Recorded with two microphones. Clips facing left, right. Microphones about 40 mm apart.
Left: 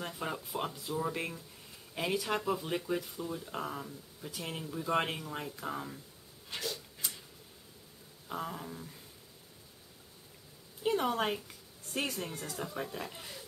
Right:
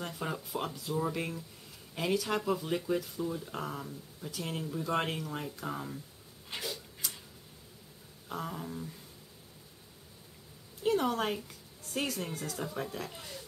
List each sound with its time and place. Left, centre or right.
0.0 s speech: centre
6.5 s tick-tock: centre
7.0 s tick-tock: centre
8.3 s speech: centre
10.8 s a woman's voice: centre